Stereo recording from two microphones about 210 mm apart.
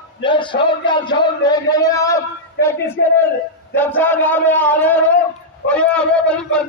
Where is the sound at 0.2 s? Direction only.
25° left (ahead or behind).